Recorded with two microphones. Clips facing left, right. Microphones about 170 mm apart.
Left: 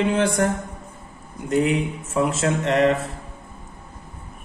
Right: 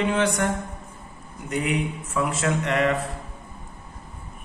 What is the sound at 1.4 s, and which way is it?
A man's voice, 30° left (ahead or behind).